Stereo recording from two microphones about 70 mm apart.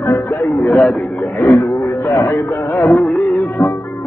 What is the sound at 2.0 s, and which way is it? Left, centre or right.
Speech, left.